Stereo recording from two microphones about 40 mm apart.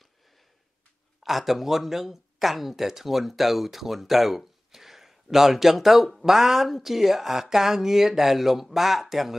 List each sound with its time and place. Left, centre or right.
1.2 s a woman's voice: centre